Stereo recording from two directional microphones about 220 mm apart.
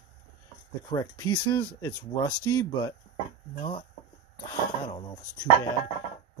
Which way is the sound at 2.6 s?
20° left (ahead or behind).